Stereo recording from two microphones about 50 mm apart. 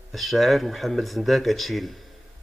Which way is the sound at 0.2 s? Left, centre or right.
Centre.